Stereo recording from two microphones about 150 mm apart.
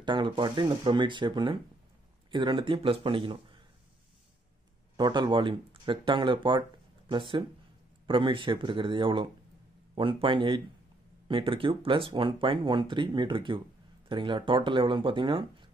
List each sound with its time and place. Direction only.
0.0 s speech: 30° right (ahead or behind)
4.9 s speech: 30° right (ahead or behind)